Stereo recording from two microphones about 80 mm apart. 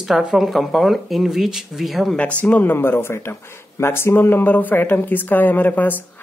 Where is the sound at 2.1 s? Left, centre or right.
Centre.